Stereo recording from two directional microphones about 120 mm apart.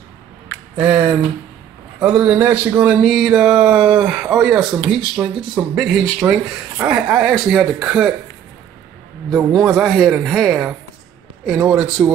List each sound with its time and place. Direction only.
0.7 s speech: 15° right (ahead or behind)
9.3 s speech: centre (ahead or behind)